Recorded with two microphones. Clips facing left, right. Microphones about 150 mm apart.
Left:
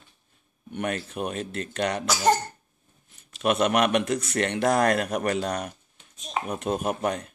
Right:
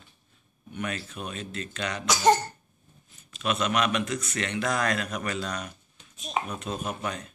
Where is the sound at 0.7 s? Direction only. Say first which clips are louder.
Left 4 dB; 55° left (ahead or behind).